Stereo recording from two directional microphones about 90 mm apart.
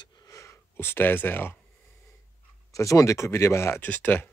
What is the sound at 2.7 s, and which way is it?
Speech, 40° left (ahead or behind).